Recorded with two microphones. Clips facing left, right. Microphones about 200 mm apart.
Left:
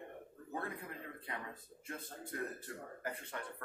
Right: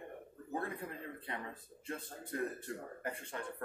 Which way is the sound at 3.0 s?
30° right (ahead or behind).